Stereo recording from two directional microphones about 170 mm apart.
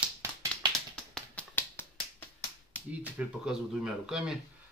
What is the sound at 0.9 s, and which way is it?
Finger snapping, 5° left (ahead or behind).